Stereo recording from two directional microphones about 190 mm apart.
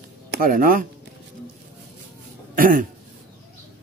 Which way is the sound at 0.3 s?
45° right (ahead or behind).